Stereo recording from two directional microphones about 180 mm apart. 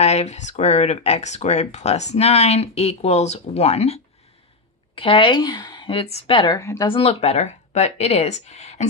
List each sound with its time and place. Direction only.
0.0 s a woman's voice: 40° left (ahead or behind); by 6.9 s 20° left (ahead or behind)
6.9 s speech: 35° left (ahead or behind)